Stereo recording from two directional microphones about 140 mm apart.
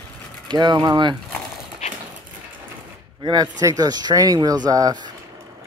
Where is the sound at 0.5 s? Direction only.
30° right (ahead or behind).